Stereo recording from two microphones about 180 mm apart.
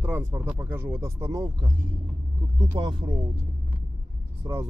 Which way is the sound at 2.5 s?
25° right (ahead or behind).